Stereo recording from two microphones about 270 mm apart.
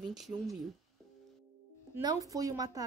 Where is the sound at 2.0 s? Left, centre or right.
Centre.